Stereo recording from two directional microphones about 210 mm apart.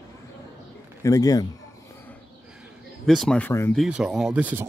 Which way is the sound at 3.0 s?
Centre (ahead or behind).